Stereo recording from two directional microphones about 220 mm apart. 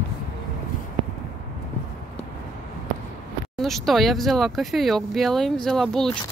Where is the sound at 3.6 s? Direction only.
Centre (ahead or behind).